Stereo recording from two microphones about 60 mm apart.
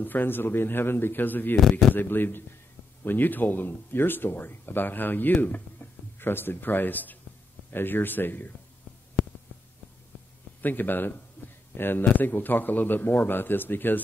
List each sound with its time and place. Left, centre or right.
0.0 s speech: left
1.6 s speech: centre
2.0 s speech: left
10.6 s speech: left
11.4 s a sound: left
11.7 s speech: left